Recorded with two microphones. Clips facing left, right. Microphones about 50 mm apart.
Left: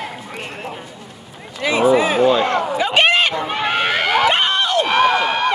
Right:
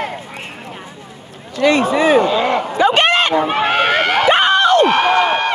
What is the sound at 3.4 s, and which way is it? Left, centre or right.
Run, right.